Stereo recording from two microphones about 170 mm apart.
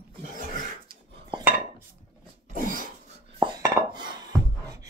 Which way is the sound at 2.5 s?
50° right (ahead or behind).